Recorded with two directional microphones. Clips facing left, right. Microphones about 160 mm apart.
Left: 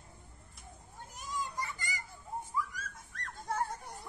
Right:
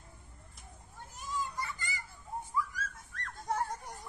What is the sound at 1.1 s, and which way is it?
Children playing, 15° left (ahead or behind).